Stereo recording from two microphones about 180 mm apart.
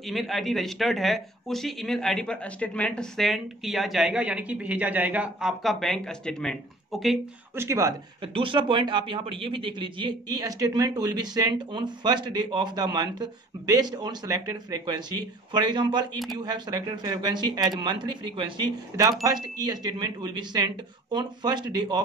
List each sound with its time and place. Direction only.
0.0 s a man's voice: centre (ahead or behind)
7.5 s speech: 15° right (ahead or behind)
8.2 s speech: 30° right (ahead or behind)